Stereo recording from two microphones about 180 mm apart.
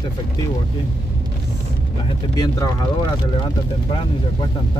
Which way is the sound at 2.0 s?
25° left (ahead or behind).